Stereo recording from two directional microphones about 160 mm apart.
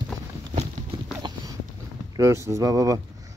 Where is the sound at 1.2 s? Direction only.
30° right (ahead or behind).